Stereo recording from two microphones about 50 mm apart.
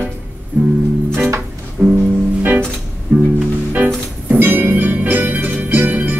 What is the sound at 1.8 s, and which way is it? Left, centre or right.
Music, right.